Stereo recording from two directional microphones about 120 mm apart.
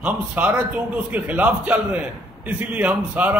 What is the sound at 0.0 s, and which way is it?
A man's voice, 10° right (ahead or behind).